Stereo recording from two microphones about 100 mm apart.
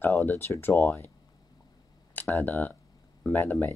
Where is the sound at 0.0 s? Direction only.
20° left (ahead or behind).